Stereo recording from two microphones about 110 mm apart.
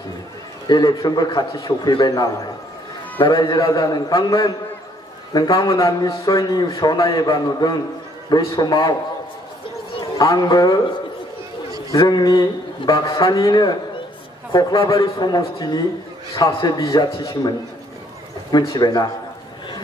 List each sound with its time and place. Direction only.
0.7 s a man's voice: 40° left (ahead or behind)
10.2 s a man's voice: 35° left (ahead or behind)
11.9 s a man's voice: 35° left (ahead or behind)
18.7 s a man's voice: 35° left (ahead or behind)